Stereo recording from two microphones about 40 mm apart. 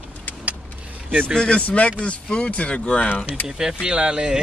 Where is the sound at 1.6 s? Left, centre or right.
Left.